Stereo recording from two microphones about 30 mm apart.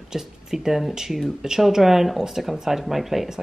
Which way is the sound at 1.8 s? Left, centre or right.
Centre.